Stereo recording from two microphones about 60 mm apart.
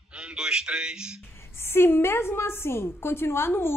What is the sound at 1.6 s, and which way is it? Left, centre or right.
A woman's voice, left.